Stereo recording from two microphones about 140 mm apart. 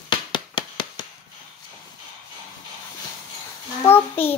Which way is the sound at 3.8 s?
15° left (ahead or behind).